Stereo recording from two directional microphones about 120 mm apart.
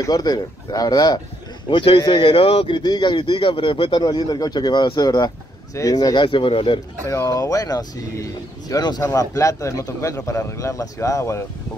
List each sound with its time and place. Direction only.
0.0 s a man's voice: 35° left (ahead or behind)
1.7 s a man's voice: 45° left (ahead or behind)
7.1 s a man's voice: 25° left (ahead or behind)